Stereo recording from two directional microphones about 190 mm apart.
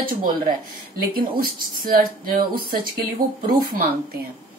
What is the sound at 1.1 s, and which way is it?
Speech, 50° right (ahead or behind).